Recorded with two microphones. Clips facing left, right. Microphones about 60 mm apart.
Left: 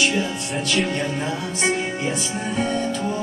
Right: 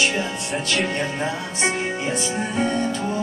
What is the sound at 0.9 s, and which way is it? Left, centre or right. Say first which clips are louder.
Music: even; centre.